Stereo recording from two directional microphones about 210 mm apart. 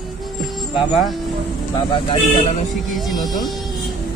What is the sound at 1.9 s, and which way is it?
Speech, 25° left (ahead or behind).